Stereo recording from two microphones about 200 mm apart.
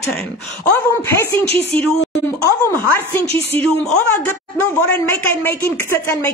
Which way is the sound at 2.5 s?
15° left (ahead or behind).